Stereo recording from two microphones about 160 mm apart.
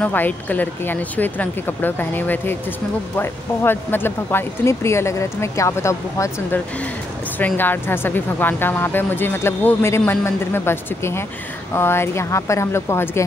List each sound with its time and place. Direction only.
0.0 s speech: 10° left (ahead or behind)